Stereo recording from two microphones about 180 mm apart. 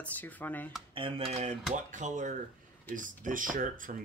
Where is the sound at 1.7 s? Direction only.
45° right (ahead or behind).